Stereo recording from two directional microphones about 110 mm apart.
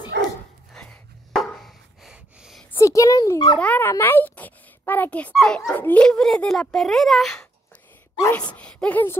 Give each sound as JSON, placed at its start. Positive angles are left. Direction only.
{"t": 0.7, "sound": "a sound", "side_deg": 5}
{"t": 2.7, "sound": "speech", "side_deg": 30}
{"t": 3.5, "sound": "a woman's voice", "side_deg": 15}
{"t": 5.3, "sound": "speech", "side_deg": 5}